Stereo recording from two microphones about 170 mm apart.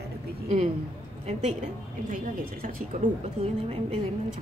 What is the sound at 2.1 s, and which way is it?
Speech, 55° right (ahead or behind).